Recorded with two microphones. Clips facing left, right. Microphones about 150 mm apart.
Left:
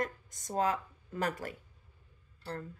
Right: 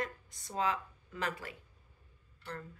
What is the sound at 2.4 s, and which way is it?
Speech, 35° left (ahead or behind).